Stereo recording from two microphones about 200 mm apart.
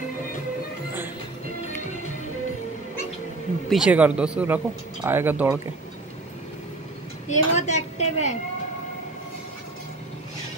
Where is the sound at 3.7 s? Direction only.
5° right (ahead or behind).